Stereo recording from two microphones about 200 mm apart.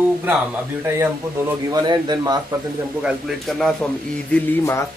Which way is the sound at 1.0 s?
15° right (ahead or behind).